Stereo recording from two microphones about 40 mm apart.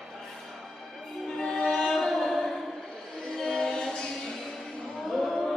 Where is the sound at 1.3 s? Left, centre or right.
Centre.